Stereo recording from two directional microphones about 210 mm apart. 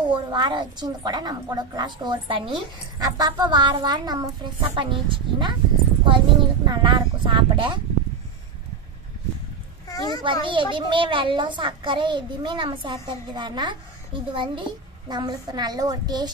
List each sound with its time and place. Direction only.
0.1 s a child's voice: 25° right (ahead or behind)
9.8 s a child's voice: 20° left (ahead or behind)
10.2 s a child's voice: 25° right (ahead or behind)